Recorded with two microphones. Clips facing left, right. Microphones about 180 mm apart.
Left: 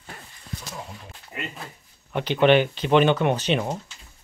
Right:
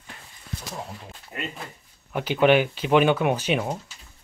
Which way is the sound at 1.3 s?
Centre (ahead or behind).